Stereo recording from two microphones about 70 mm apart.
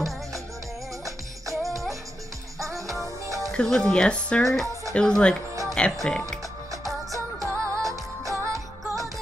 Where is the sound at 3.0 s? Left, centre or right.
Right.